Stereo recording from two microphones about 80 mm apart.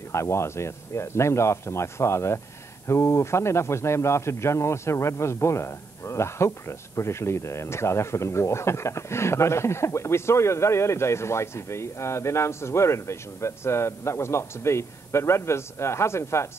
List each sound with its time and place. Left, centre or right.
0.1 s speech: left